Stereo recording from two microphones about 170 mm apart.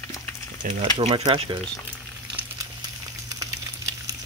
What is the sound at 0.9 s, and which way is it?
Speech, 30° right (ahead or behind).